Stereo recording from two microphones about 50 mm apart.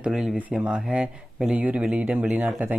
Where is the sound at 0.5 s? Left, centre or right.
Right.